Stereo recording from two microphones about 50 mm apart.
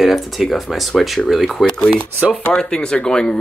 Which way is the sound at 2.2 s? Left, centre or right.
Right.